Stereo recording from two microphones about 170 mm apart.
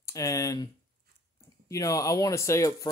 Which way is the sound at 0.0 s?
20° left (ahead or behind).